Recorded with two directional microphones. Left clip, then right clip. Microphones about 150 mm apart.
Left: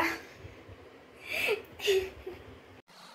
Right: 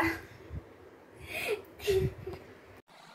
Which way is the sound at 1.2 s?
40° left (ahead or behind).